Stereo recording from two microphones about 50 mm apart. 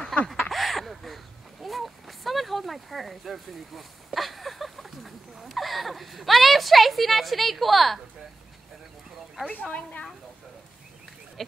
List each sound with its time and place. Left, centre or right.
0.1 s a sound: centre
0.5 s speech: centre
9.5 s a woman's voice: left